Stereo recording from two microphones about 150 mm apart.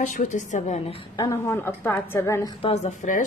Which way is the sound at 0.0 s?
55° left (ahead or behind).